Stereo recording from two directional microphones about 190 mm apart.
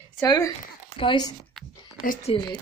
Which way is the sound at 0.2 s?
15° left (ahead or behind).